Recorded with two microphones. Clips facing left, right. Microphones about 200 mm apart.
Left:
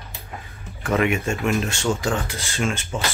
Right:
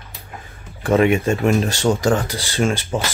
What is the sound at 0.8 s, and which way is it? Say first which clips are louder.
Speech: right 6 dB; 30° right (ahead or behind).